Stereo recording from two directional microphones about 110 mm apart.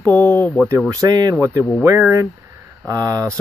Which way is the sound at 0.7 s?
30° right (ahead or behind).